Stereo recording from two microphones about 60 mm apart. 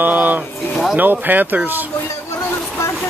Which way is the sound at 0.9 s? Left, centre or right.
Right.